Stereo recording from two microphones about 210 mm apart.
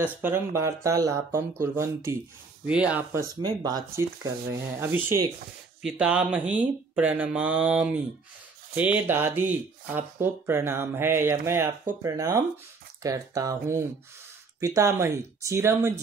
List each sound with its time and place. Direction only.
0.0 s speech: 10° right (ahead or behind)